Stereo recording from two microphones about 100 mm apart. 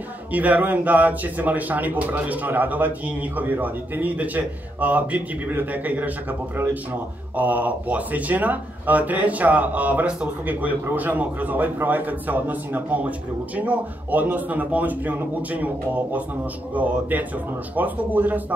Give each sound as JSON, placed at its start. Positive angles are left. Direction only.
{"t": 0.3, "sound": "speech", "side_deg": -15}